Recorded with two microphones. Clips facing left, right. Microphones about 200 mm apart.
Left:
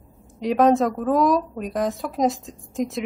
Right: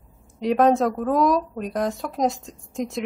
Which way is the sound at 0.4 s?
Centre (ahead or behind).